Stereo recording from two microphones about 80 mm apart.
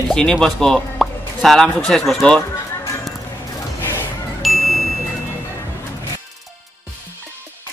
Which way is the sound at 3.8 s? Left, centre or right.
Left.